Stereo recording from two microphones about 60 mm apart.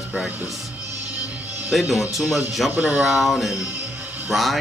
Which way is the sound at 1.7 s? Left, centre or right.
Centre.